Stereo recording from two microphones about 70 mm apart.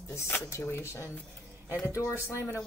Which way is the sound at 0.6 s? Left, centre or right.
Left.